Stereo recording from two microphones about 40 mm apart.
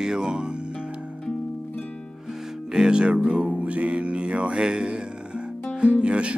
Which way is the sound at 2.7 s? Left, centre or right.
Centre.